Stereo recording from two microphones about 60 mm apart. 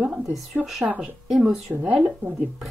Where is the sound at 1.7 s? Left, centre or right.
Right.